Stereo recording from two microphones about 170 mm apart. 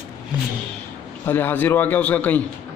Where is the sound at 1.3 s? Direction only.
10° left (ahead or behind).